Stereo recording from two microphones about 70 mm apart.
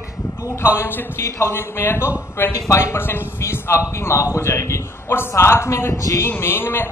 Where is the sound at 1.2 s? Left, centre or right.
Left.